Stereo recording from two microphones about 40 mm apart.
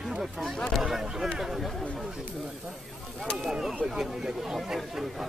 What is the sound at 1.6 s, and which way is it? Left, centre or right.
Speech, centre.